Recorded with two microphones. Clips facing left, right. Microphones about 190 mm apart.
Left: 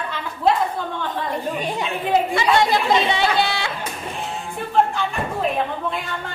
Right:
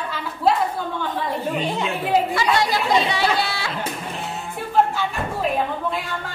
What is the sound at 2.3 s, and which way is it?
Speech, 25° left (ahead or behind).